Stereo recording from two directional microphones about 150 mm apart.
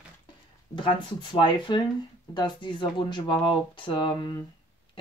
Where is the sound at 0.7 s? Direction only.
35° left (ahead or behind).